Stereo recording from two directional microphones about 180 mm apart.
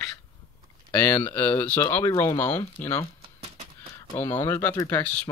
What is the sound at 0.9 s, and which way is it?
Speech, 10° left (ahead or behind).